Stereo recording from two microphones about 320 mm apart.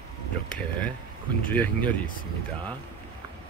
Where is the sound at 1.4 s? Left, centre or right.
Centre.